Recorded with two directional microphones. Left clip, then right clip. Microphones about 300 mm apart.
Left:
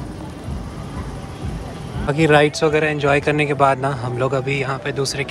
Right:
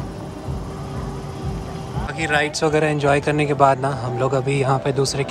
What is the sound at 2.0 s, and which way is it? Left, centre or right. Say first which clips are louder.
A man's voice: left 6 dB; centre.